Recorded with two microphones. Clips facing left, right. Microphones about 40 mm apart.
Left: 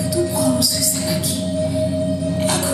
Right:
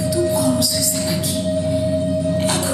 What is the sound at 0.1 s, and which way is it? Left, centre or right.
Music, right.